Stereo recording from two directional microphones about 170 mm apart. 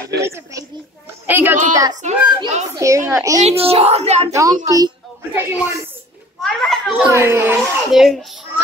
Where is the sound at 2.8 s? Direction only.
15° right (ahead or behind).